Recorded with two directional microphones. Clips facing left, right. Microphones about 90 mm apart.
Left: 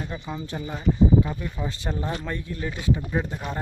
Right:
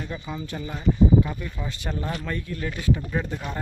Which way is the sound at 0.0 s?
20° left (ahead or behind).